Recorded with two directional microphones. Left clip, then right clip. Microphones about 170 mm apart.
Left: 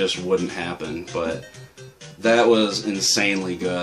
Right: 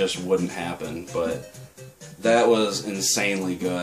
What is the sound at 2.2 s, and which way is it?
Speech, 25° left (ahead or behind).